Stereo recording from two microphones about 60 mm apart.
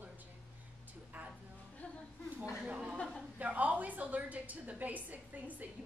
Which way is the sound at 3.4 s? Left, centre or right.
Right.